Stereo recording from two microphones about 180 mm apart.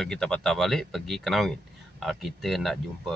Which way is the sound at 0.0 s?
5° left (ahead or behind).